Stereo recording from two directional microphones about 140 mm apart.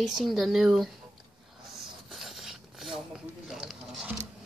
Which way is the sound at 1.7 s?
Centre (ahead or behind).